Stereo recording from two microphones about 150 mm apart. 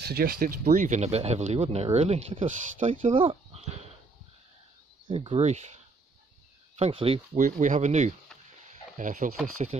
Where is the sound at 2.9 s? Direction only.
40° right (ahead or behind).